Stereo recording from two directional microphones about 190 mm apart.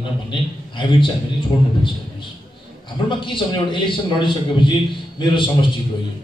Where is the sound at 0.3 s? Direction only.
25° left (ahead or behind).